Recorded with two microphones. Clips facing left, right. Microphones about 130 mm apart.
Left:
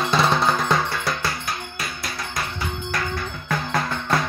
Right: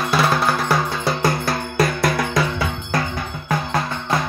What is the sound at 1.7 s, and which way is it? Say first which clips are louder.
Music: right 13 dB; 70° right (ahead or behind).